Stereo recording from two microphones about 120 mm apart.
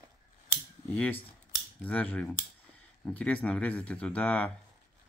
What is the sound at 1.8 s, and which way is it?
Speech, 15° left (ahead or behind).